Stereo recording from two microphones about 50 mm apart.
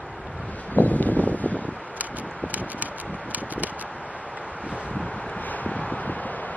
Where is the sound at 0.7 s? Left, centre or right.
Left.